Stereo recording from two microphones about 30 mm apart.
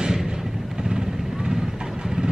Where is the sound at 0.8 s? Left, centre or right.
Right.